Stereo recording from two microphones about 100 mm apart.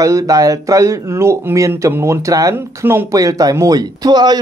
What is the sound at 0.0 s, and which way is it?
Speech, 35° right (ahead or behind).